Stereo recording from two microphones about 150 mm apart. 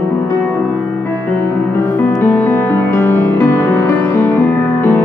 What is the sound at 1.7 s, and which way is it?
Music, 10° left (ahead or behind).